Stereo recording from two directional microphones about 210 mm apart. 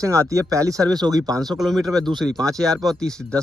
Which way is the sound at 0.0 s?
15° right (ahead or behind).